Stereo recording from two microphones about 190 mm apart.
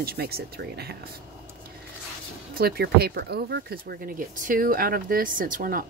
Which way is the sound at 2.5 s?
55° right (ahead or behind).